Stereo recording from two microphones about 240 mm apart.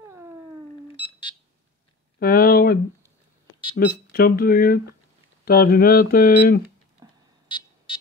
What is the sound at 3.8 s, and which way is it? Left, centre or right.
Speech, left.